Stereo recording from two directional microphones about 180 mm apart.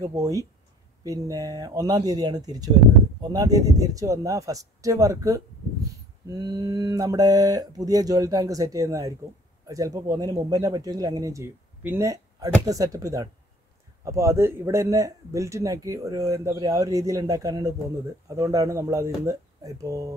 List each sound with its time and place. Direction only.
0.0 s a man's voice: 20° right (ahead or behind)